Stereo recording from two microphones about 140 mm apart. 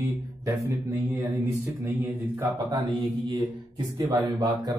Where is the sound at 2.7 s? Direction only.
30° right (ahead or behind).